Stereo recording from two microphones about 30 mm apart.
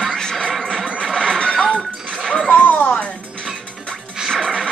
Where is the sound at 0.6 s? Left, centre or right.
Centre.